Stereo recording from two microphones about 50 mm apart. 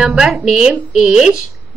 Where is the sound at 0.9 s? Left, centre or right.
Centre.